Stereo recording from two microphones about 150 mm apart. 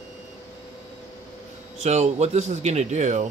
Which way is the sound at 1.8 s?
45° right (ahead or behind).